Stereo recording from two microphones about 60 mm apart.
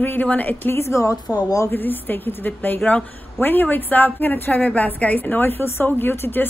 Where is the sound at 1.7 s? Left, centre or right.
Left.